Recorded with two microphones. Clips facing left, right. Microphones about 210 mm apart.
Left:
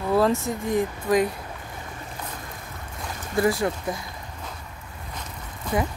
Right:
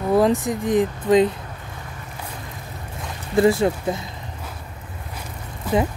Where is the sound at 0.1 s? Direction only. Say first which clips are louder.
Right 3 dB; 15° right (ahead or behind).